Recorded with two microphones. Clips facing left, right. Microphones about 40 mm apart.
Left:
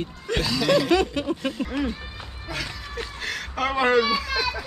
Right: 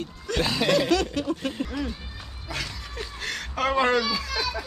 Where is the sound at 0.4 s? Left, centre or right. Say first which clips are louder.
Left 1 dB; right.